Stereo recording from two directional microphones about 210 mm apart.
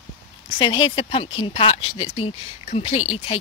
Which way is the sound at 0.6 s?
25° left (ahead or behind).